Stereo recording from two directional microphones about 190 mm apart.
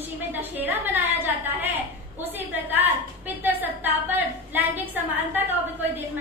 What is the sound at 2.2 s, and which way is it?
A woman's voice, 10° right (ahead or behind).